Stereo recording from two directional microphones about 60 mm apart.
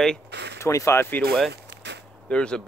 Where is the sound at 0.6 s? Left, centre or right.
Left.